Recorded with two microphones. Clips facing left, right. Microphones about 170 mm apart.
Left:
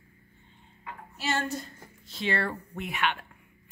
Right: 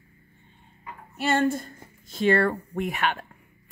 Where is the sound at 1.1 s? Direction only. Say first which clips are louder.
Right 8 dB; 55° right (ahead or behind).